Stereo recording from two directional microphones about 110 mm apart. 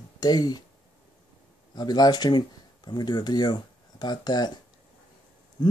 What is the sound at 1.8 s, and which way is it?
Speech, 35° left (ahead or behind).